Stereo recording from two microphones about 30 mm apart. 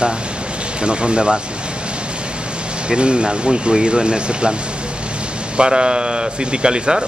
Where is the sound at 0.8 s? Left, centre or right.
Right.